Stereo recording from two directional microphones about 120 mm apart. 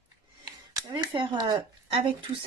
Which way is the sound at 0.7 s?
40° right (ahead or behind).